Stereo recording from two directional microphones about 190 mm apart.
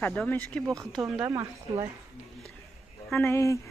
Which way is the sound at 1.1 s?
10° right (ahead or behind).